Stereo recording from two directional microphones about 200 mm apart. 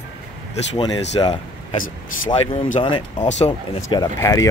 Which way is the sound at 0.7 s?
20° left (ahead or behind).